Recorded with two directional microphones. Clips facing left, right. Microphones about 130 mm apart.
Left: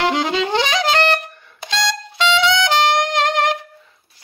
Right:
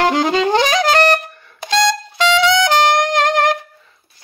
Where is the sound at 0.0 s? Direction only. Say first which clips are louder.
Right 4 dB; 45° right (ahead or behind).